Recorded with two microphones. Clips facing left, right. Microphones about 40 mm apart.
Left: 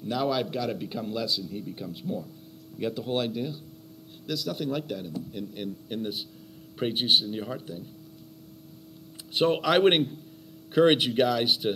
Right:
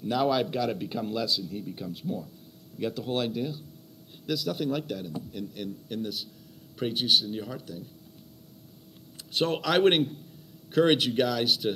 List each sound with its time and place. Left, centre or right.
0.0 s speech: centre
9.3 s speech: centre